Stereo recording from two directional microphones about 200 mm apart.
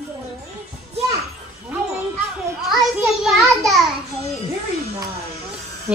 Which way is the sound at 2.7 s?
Centre (ahead or behind).